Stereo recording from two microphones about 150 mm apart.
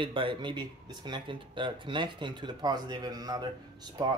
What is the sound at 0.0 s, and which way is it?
Speech, 35° right (ahead or behind).